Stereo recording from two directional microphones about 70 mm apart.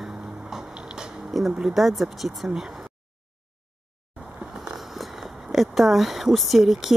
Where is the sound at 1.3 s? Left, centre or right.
Centre.